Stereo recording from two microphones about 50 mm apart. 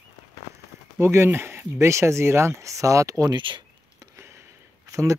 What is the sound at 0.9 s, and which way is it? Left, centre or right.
Speech, right.